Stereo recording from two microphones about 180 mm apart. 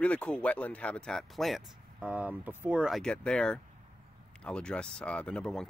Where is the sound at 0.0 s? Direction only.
5° left (ahead or behind).